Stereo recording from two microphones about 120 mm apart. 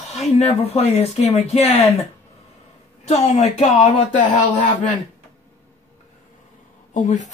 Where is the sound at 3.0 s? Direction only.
70° left (ahead or behind).